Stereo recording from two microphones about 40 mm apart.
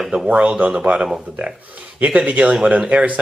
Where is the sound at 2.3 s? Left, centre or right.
Right.